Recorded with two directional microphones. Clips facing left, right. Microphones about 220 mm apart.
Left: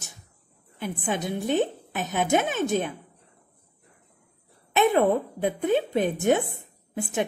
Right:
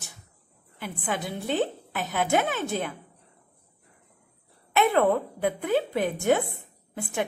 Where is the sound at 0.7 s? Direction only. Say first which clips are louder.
Left 3 dB; 20° left (ahead or behind).